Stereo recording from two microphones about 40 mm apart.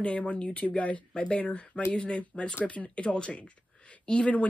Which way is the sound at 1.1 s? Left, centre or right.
Left.